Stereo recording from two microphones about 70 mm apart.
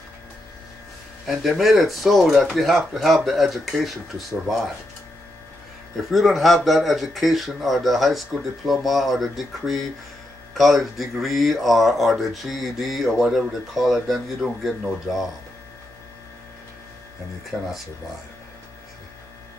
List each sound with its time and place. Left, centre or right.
1.2 s speech: centre
5.9 s speech: centre
17.5 s speech: right